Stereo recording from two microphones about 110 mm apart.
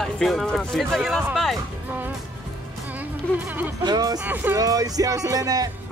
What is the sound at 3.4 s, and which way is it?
Speech, 15° right (ahead or behind).